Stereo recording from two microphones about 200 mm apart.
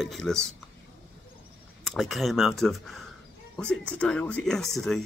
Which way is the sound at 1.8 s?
Centre (ahead or behind).